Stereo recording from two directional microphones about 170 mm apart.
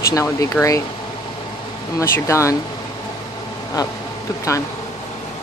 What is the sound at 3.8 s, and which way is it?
Speech, 20° left (ahead or behind).